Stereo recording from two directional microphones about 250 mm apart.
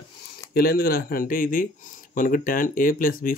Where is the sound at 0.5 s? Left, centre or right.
Left.